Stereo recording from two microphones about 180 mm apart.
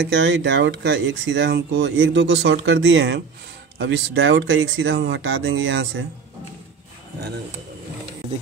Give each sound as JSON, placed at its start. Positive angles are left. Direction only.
{"t": 0.0, "sound": "speech", "side_deg": -85}
{"t": 3.7, "sound": "speech", "side_deg": -75}